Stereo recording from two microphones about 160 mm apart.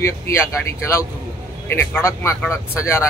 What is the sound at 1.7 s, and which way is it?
Speech, 15° left (ahead or behind).